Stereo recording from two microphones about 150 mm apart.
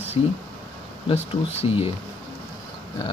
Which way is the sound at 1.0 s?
40° left (ahead or behind).